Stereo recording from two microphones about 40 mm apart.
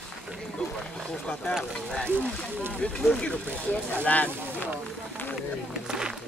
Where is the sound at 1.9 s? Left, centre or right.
Left.